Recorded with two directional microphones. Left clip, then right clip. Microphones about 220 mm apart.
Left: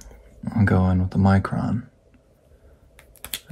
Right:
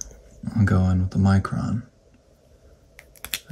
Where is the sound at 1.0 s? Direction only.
15° right (ahead or behind).